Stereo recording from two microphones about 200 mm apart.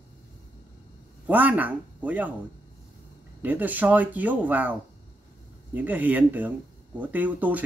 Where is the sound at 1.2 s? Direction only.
10° right (ahead or behind).